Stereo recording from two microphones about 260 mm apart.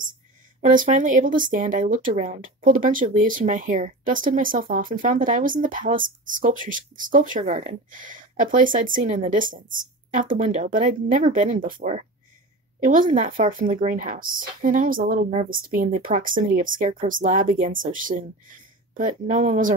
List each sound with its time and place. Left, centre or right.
0.6 s speech: right